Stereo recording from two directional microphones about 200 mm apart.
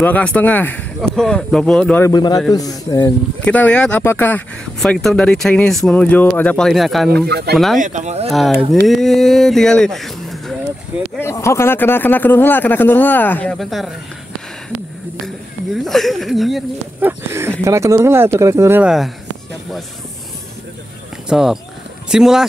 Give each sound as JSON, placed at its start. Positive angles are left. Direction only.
{"t": 0.0, "sound": "speech", "side_deg": 5}
{"t": 3.5, "sound": "speech", "side_deg": 5}
{"t": 7.2, "sound": "speech", "side_deg": -55}
{"t": 7.5, "sound": "speech", "side_deg": 0}
{"t": 7.8, "sound": "speech", "side_deg": -35}
{"t": 8.3, "sound": "speech", "side_deg": 0}
{"t": 11.1, "sound": "speech", "side_deg": 15}
{"t": 15.2, "sound": "speech", "side_deg": 0}
{"t": 17.3, "sound": "speech", "side_deg": -15}
{"t": 21.3, "sound": "speech", "side_deg": 0}